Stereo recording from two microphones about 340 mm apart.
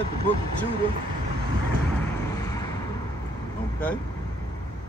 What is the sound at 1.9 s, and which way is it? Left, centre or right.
Vehicle, centre.